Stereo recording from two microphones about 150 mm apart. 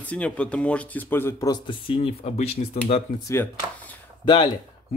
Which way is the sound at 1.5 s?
35° left (ahead or behind).